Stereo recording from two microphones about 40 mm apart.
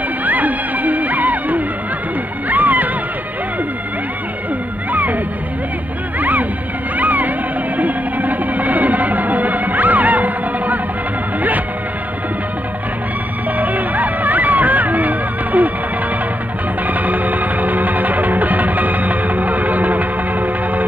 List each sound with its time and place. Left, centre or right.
0.2 s music: right
4.9 s music: right
13.6 s music: right
16.8 s music: right